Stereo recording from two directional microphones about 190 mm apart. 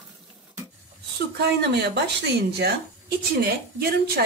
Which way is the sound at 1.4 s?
60° right (ahead or behind).